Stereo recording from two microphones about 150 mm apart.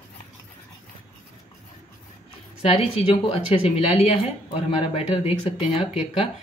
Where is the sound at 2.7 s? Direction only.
40° left (ahead or behind).